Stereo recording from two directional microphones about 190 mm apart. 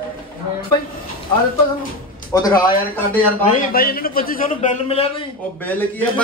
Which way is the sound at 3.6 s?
50° left (ahead or behind).